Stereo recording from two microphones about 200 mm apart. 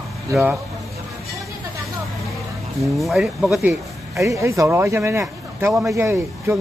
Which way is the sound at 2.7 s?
Centre (ahead or behind).